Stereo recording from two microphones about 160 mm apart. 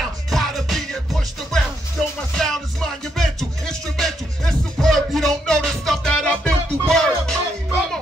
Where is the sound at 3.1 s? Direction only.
Centre (ahead or behind).